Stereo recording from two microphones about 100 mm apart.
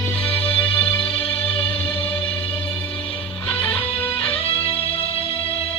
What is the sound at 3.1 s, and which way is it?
Music, 75° left (ahead or behind).